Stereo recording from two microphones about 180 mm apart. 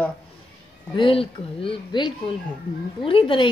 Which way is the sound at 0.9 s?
30° left (ahead or behind).